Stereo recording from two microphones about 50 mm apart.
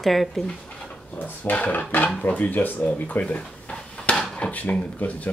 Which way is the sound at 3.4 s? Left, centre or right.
Centre.